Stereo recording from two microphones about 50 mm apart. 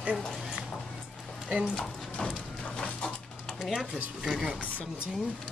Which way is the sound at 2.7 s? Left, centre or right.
Centre.